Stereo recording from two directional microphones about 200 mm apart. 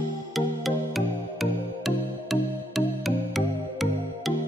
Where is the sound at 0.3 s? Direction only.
Centre (ahead or behind).